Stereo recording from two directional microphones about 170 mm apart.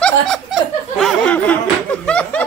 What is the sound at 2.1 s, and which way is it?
Laughter, 5° left (ahead or behind).